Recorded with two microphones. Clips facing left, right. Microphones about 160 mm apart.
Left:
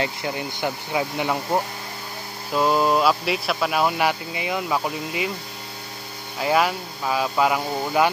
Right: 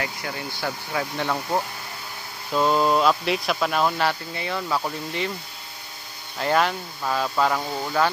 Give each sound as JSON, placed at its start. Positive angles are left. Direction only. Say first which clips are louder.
{"t": 0.0, "sound": "speech", "louder": "left 4 dB", "side_deg": 20}
{"t": 6.3, "sound": "speech", "louder": "left 1 dB", "side_deg": 5}